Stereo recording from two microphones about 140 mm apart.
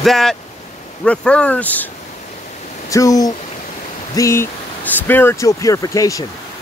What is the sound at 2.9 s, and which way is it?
Speech, 25° left (ahead or behind).